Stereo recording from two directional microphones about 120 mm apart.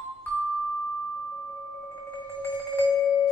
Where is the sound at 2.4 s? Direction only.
20° left (ahead or behind).